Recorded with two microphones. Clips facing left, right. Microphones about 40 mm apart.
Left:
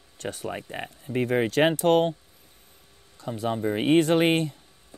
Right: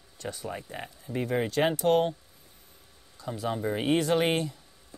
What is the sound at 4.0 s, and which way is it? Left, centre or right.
Speech, left.